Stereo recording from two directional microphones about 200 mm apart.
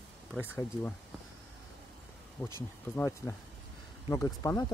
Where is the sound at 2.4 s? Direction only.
10° left (ahead or behind).